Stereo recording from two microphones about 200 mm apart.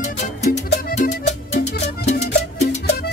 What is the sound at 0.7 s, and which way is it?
Music, 55° left (ahead or behind).